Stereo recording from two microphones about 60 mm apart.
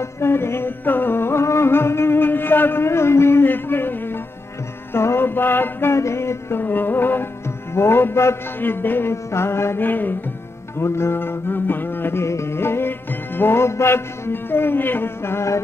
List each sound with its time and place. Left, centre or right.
0.0 s music: left
6.6 s music: left
9.1 s music: left
9.8 s music: left
10.8 s music: left